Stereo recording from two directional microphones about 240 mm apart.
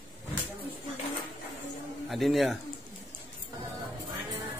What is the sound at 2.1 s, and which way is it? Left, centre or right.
Speech, centre.